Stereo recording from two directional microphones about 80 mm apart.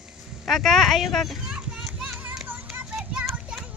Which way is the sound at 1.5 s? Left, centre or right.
Centre.